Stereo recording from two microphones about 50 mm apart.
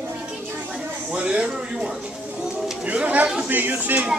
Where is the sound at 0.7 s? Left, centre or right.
Right.